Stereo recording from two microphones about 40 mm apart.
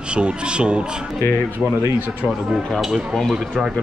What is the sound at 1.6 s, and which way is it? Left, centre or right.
Speech, centre.